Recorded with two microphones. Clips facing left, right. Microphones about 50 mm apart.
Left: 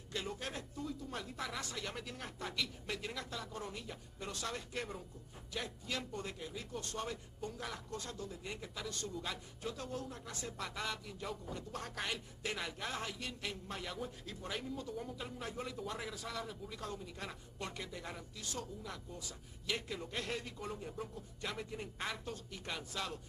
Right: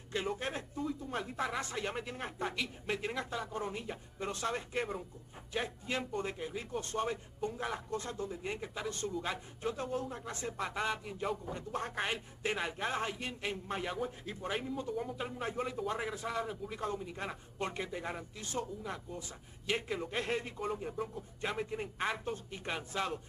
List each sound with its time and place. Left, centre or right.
0.1 s speech: right